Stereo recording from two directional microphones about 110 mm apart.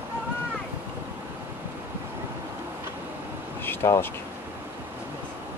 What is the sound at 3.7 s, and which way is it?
Speech, 20° left (ahead or behind).